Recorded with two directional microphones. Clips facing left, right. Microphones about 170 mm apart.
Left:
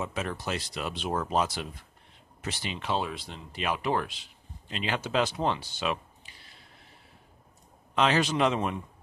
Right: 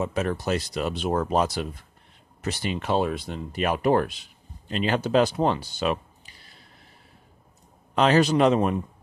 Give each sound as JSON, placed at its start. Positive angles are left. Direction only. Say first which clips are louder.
{"t": 0.0, "sound": "speech", "louder": "right 7 dB", "side_deg": -40}
{"t": 7.9, "sound": "speech", "louder": "right 6 dB", "side_deg": -40}